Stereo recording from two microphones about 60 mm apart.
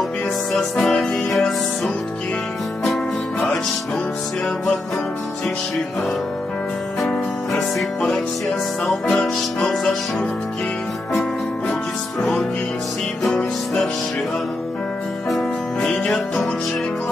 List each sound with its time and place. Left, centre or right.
2.8 s music: centre
7.0 s music: centre
8.8 s music: centre
13.2 s music: centre
15.8 s music: centre